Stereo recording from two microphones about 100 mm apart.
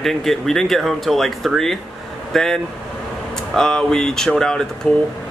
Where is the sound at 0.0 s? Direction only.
Centre (ahead or behind).